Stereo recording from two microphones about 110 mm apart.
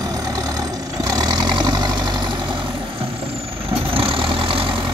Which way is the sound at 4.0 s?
55° right (ahead or behind).